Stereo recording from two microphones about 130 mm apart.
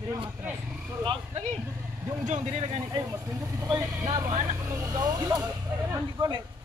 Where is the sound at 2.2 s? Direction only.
60° right (ahead or behind).